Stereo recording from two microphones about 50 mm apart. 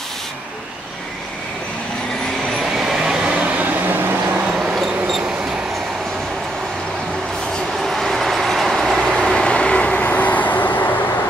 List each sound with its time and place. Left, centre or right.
2.8 s vehicle: centre
3.5 s vehicle: right
4.7 s a sound: centre
7.7 s train: centre
9.0 s vehicle: centre; by 10.8 s left